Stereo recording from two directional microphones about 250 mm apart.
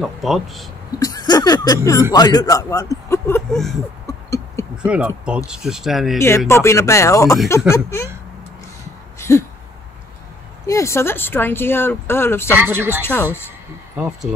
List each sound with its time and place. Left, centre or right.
0.0 s speech: centre
0.9 s a sound: centre
2.1 s speech: centre
4.8 s speech: centre
6.1 s speech: centre
9.3 s speech: centre
10.7 s speech: centre
12.5 s speech: centre
13.0 s speech: centre
14.3 s speech: centre